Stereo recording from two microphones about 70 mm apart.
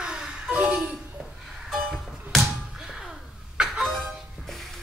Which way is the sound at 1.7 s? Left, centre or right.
Centre.